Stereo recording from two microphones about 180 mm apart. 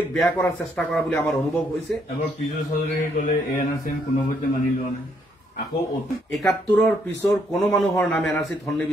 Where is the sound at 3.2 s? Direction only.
50° left (ahead or behind).